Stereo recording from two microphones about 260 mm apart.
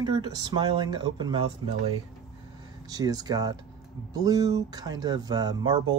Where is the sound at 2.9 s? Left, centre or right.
Centre.